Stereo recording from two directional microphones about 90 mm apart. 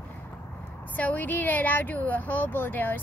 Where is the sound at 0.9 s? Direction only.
20° left (ahead or behind).